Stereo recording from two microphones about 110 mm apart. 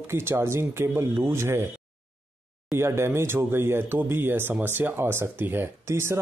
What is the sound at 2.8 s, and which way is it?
Speech, 25° right (ahead or behind).